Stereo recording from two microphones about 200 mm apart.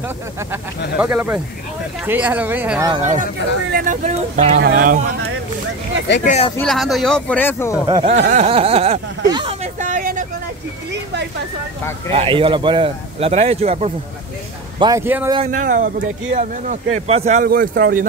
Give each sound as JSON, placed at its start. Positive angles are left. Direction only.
{"t": 0.5, "sound": "speech", "side_deg": -10}
{"t": 3.0, "sound": "speech", "side_deg": -35}
{"t": 4.6, "sound": "speech", "side_deg": -50}
{"t": 6.2, "sound": "speech", "side_deg": 35}
{"t": 6.6, "sound": "speech", "side_deg": 0}
{"t": 7.9, "sound": "speech", "side_deg": -30}
{"t": 12.1, "sound": "a man's voice", "side_deg": -30}
{"t": 14.8, "sound": "speech", "side_deg": -15}
{"t": 15.3, "sound": "speech", "side_deg": -35}